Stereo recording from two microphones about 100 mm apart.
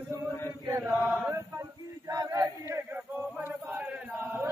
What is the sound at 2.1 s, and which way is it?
Male singing, 35° right (ahead or behind).